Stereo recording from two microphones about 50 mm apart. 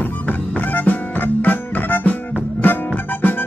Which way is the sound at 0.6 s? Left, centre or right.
Left.